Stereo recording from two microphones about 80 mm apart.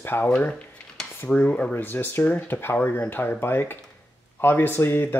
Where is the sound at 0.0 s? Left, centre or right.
Left.